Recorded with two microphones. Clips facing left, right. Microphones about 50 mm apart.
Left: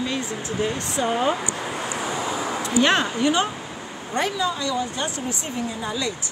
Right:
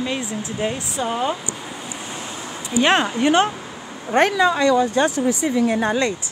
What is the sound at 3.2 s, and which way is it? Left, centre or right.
Speech, right.